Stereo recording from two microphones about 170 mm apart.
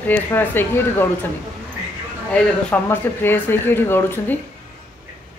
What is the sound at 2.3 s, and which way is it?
Speech, 10° left (ahead or behind).